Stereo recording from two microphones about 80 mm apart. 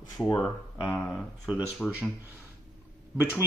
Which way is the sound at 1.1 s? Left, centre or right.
Centre.